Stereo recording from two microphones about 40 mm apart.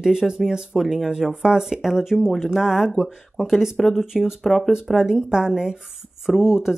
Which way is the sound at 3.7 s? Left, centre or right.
Centre.